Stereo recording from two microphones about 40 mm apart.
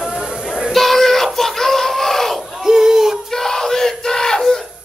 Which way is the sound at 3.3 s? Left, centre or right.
Centre.